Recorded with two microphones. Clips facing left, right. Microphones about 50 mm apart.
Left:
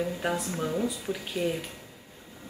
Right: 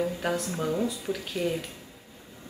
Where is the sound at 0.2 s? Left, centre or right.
Centre.